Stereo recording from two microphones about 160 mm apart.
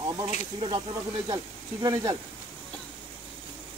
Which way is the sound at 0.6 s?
35° right (ahead or behind).